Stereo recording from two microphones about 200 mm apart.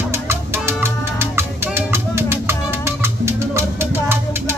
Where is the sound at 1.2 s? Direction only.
10° right (ahead or behind).